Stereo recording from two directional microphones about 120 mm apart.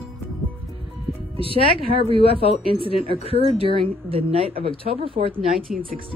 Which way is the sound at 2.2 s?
50° left (ahead or behind).